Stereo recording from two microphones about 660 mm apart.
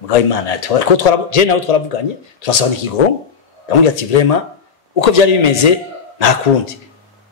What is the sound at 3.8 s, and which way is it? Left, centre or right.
A man's voice, left.